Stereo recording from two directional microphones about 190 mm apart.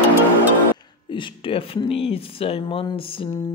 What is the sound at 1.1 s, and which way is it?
Speech, 25° left (ahead or behind).